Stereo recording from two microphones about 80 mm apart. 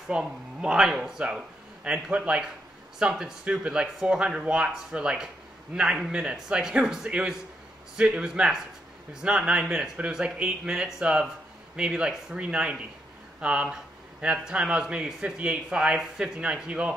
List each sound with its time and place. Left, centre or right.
0.1 s speech: centre